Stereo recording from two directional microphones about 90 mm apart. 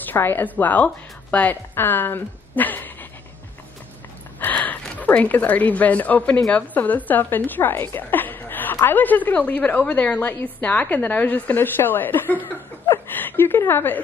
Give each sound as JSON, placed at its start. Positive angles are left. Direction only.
{"t": 0.0, "sound": "a woman's voice", "side_deg": 25}
{"t": 4.4, "sound": "a woman's voice", "side_deg": 20}